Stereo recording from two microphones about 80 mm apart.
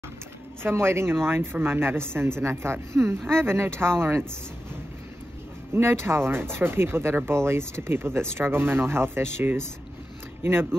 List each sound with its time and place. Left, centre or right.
0.6 s speech: right
5.8 s speech: right